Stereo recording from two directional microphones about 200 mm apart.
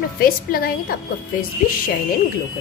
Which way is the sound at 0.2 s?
50° left (ahead or behind).